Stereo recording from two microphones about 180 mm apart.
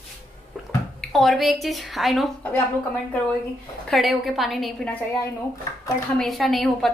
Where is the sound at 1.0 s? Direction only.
Centre (ahead or behind).